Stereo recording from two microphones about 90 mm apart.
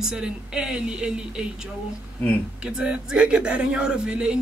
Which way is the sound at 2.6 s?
10° right (ahead or behind).